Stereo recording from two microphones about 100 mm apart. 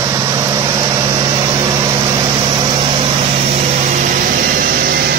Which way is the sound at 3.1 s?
85° right.